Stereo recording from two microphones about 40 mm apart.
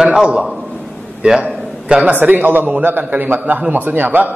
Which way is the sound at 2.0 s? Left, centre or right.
Right.